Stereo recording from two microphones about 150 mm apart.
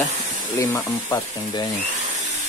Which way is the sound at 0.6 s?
20° left (ahead or behind).